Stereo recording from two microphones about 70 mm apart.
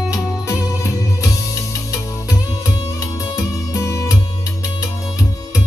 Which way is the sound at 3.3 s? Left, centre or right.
Left.